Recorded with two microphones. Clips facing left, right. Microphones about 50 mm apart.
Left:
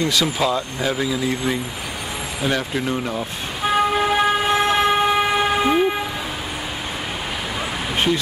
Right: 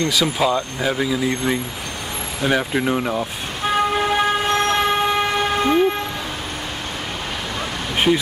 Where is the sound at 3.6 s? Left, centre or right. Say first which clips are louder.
Left 1 dB; centre.